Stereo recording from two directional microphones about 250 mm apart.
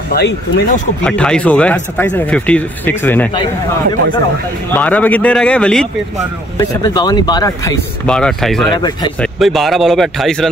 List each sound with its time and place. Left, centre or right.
0.1 s speech: left
1.0 s speech: centre
4.6 s speech: centre
6.6 s speech: centre
8.7 s speech: centre
9.2 s speech: centre